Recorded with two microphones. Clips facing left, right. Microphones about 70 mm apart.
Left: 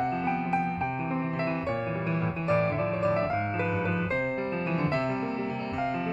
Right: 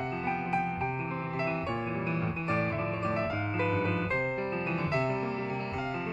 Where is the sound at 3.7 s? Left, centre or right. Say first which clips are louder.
Left 1 dB; centre.